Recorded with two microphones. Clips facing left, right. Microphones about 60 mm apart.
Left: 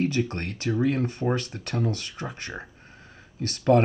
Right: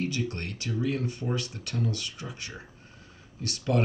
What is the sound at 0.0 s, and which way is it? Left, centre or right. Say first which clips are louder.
Speech: left 5 dB; left.